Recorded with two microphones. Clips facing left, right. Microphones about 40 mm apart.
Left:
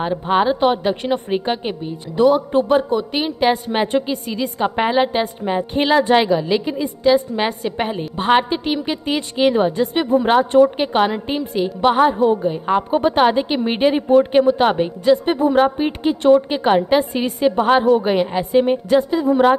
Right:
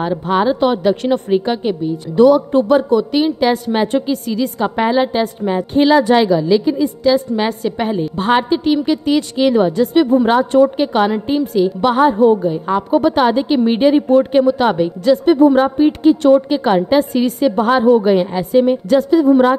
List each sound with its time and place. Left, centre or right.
0.5 s a woman's voice: centre
6.0 s a woman's voice: left; by 12.4 s centre
12.4 s a woman's voice: left
16.0 s a woman's voice: left
19.2 s speech: centre